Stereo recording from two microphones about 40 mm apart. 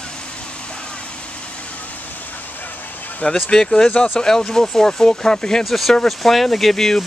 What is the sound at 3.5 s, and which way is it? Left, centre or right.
Speech, centre.